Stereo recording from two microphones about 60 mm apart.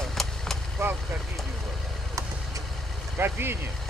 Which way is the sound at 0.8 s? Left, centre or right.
Right.